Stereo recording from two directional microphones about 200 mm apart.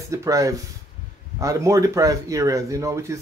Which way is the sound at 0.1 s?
15° right (ahead or behind).